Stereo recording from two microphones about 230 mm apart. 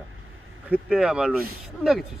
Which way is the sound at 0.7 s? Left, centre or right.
Centre.